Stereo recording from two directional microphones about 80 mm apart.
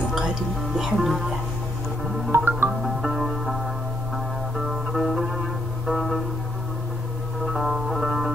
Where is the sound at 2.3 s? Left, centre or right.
Right.